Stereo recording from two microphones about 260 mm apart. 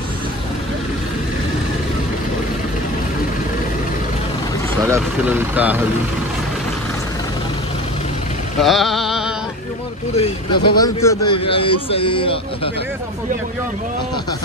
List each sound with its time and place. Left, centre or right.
4.8 s speech: centre
8.5 s a sound: centre
10.1 s a man's voice: left
10.8 s a man's voice: centre